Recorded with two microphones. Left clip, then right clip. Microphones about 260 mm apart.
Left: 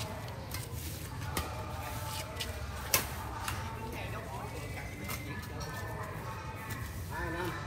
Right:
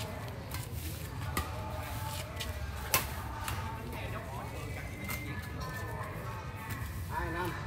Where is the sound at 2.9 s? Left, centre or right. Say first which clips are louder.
Even; right.